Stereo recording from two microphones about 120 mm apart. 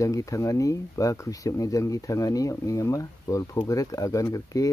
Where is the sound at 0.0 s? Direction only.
25° left (ahead or behind).